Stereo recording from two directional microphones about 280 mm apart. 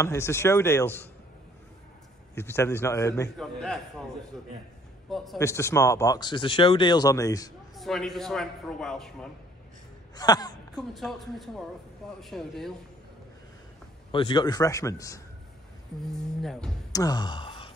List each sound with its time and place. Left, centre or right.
0.0 s speech: centre
2.3 s speech: centre
5.1 s speech: centre
7.7 s a man's voice: centre
10.1 s speech: centre
10.8 s a man's voice: centre
14.1 s a man's voice: centre
16.9 s speech: centre